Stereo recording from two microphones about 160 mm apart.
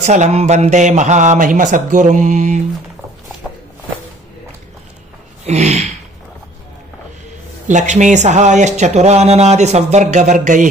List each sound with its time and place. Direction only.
0.0 s speech: 45° right (ahead or behind)
5.4 s a sound: 45° right (ahead or behind)
7.6 s speech: 50° right (ahead or behind)